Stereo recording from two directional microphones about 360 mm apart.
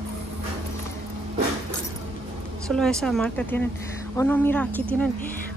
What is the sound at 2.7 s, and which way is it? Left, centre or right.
Speech, centre.